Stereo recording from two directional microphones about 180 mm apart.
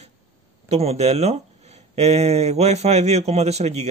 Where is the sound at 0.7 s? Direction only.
35° right (ahead or behind).